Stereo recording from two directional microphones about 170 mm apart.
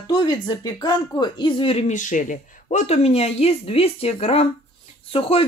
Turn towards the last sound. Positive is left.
turn(degrees=35)  # may be behind; listen again after turning